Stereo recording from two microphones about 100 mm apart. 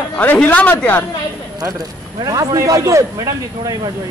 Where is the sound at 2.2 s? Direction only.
40° right (ahead or behind).